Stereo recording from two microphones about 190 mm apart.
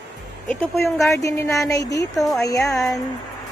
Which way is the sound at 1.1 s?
15° left (ahead or behind).